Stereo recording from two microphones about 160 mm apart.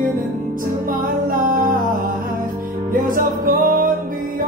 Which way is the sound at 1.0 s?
60° right (ahead or behind).